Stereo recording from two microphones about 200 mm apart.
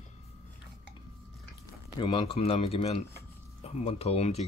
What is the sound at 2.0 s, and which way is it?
Speech, 25° left (ahead or behind).